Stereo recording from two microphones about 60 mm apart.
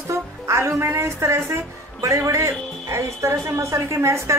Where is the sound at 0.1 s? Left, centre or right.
Right.